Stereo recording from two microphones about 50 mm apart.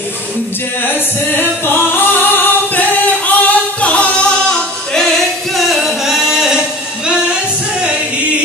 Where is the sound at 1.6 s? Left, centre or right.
Left.